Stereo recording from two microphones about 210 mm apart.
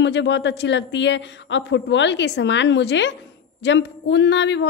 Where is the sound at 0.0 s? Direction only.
55° left (ahead or behind).